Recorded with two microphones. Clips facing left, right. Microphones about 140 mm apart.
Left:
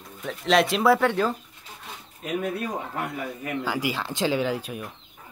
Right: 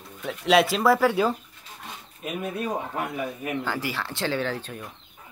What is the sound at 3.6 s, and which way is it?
Speech, 15° left (ahead or behind).